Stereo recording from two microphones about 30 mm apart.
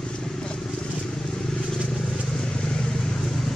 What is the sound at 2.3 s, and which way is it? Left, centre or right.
Vehicle, left.